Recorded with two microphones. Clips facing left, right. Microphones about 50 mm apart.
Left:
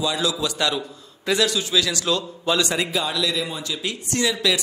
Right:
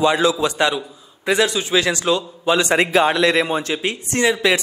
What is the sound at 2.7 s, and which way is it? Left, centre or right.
Speech, right.